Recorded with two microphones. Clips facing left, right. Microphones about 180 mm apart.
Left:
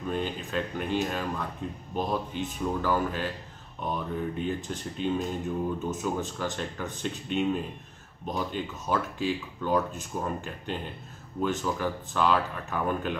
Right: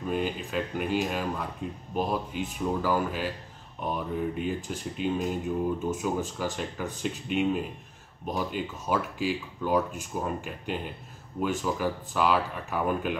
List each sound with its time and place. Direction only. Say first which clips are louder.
0.0 s speech: right 2 dB; 10° right (ahead or behind)